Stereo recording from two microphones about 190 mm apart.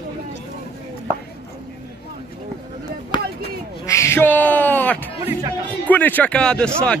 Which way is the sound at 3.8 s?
15° left (ahead or behind).